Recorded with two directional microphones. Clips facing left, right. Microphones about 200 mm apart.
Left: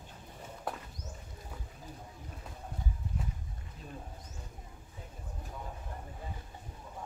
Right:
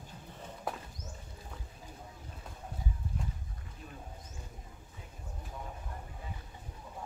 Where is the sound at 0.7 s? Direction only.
Centre (ahead or behind).